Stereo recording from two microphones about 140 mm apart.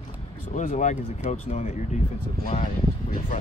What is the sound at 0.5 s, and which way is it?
Speech, 60° left (ahead or behind).